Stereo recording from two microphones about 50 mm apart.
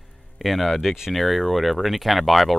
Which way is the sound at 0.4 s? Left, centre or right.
Centre.